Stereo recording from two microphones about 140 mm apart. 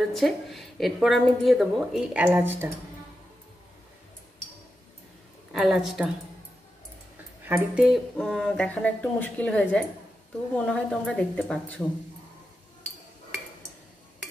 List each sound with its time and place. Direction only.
0.1 s a woman's voice: centre (ahead or behind)
2.2 s speech: 15° right (ahead or behind)
5.5 s a woman's voice: centre (ahead or behind)
7.4 s speech: 15° right (ahead or behind)
7.8 s speech: centre (ahead or behind)